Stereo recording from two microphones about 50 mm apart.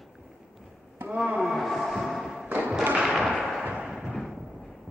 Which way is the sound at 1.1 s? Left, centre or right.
Centre.